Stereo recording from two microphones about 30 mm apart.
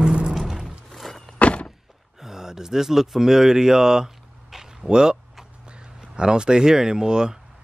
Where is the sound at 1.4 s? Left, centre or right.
Left.